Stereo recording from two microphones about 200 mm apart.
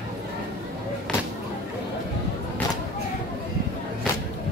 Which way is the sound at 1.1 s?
5° left (ahead or behind).